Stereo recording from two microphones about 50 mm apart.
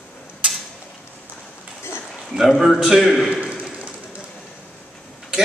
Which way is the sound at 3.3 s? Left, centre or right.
Centre.